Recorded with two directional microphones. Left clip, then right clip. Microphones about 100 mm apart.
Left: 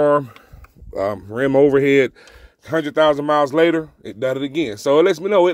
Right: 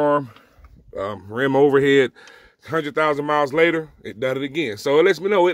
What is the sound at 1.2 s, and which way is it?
Speech, 20° left (ahead or behind).